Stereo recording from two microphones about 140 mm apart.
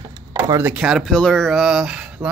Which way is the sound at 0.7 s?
5° right (ahead or behind).